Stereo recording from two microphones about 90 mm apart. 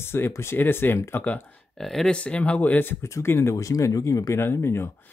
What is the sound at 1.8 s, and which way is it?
Speech, 5° left (ahead or behind).